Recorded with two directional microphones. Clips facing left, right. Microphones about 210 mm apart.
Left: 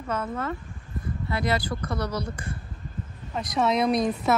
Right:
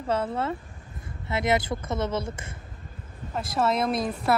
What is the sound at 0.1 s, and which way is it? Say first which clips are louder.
Speech: right 3 dB; 30° right (ahead or behind).